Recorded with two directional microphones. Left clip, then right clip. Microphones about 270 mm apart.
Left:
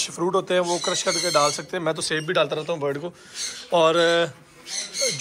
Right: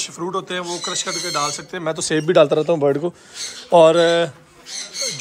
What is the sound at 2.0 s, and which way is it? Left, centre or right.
Speech, right.